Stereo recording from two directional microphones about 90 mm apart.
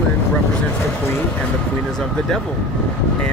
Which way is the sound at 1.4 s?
10° left (ahead or behind).